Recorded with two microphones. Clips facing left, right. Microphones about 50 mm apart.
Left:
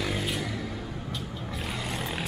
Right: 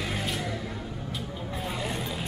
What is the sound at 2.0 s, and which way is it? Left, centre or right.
Vehicle, left.